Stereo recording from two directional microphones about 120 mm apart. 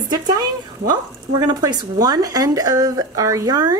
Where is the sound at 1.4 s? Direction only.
35° right (ahead or behind).